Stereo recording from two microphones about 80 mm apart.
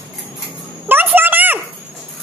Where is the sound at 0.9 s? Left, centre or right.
Right.